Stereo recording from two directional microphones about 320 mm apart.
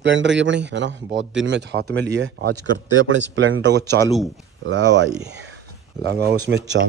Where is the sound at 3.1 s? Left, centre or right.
Right.